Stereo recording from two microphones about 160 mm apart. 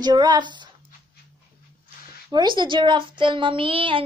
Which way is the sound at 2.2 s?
30° right (ahead or behind).